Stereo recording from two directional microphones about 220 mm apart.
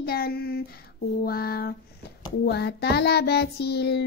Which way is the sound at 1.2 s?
45° left (ahead or behind).